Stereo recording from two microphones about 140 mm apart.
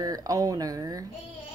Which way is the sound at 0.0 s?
25° right (ahead or behind).